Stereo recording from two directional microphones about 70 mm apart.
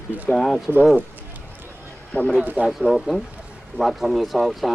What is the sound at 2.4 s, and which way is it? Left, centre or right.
Speech, right.